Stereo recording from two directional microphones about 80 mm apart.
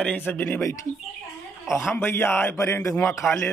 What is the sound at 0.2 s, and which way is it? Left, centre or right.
Speech, left.